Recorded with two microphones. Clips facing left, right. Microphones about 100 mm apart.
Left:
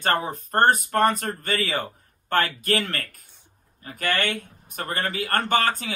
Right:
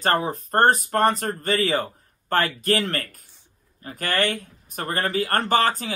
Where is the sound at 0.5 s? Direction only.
40° right (ahead or behind).